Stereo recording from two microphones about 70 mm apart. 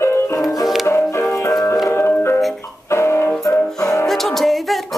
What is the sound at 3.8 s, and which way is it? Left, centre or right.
Music, left.